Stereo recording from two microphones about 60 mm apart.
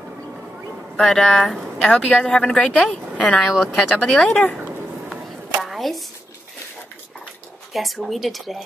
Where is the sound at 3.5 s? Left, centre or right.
Centre.